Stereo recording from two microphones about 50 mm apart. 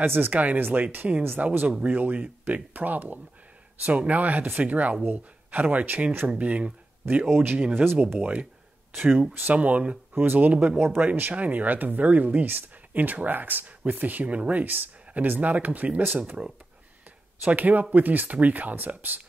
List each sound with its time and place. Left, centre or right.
0.0 s speech: right
1.4 s speech: right
7.7 s speech: right
8.2 s speech: right
9.6 s speech: right
10.2 s speech: right